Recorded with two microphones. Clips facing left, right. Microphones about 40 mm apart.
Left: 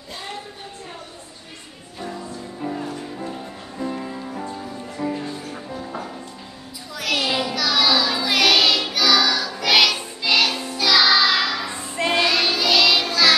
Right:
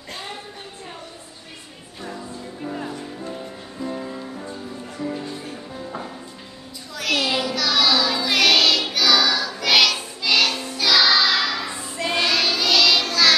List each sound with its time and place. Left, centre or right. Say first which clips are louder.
2.7 s music: even; centre
3.8 s music: left 1 dB; centre
6.9 s child singing: even; centre
9.6 s music: left 1 dB; centre